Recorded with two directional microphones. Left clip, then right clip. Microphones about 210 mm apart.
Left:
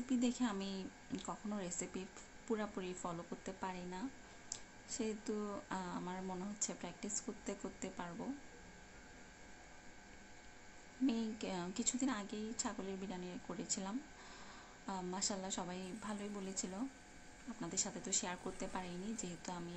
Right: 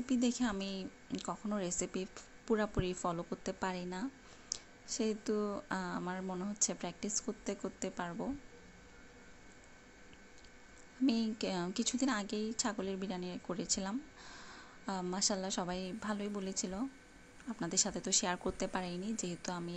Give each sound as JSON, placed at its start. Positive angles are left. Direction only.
{"t": 0.1, "sound": "speech", "side_deg": -15}
{"t": 11.1, "sound": "speech", "side_deg": -20}